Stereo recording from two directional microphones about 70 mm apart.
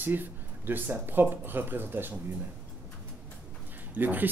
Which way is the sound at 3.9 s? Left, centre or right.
Right.